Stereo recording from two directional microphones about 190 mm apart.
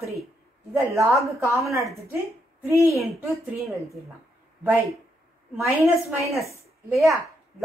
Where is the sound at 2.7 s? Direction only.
15° right (ahead or behind).